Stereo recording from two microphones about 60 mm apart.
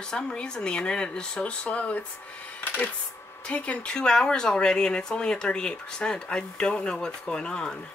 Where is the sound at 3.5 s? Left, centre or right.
Left.